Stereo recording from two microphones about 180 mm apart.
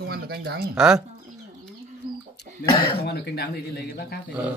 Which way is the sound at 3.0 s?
65° left (ahead or behind).